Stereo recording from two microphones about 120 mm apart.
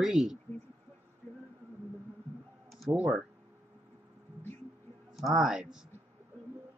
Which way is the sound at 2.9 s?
45° right (ahead or behind).